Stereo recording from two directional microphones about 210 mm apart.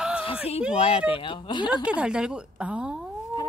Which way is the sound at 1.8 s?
5° right (ahead or behind).